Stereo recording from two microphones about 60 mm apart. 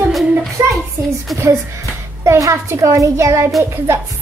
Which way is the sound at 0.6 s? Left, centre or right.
Right.